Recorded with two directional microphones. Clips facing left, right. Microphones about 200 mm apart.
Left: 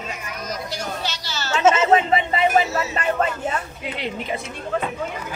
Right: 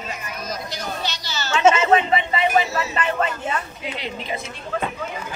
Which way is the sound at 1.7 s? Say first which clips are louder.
Left 1 dB; 40° left (ahead or behind).